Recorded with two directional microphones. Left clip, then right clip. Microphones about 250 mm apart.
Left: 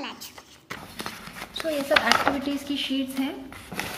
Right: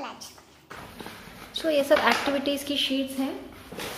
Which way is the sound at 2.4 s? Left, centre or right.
Centre.